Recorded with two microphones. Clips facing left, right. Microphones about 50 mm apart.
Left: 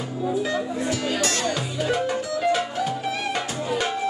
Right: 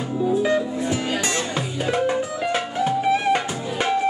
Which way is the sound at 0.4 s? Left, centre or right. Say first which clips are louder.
Right 4 dB; right.